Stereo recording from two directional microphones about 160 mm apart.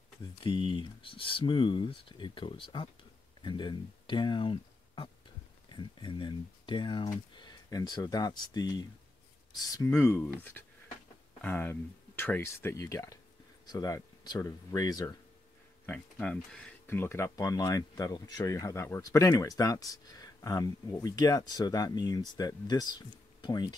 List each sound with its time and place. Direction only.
0.2 s speech: 30° left (ahead or behind)
9.8 s speech: 15° left (ahead or behind)
15.8 s speech: 10° left (ahead or behind); by 23.7 s 25° left (ahead or behind)